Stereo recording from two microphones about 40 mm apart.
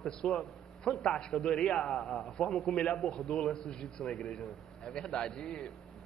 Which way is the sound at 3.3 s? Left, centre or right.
Centre.